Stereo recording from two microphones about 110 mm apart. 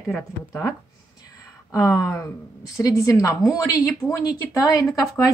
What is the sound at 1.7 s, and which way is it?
Speech, 30° left (ahead or behind).